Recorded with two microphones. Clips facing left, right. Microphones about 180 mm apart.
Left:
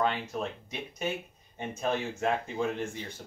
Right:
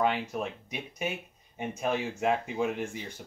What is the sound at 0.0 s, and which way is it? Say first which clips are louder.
Speech: right 1 dB; 10° right (ahead or behind).